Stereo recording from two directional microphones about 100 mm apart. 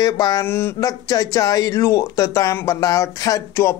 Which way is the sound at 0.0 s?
40° left (ahead or behind).